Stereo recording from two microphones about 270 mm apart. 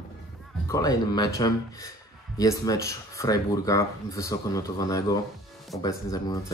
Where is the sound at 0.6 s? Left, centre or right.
Centre.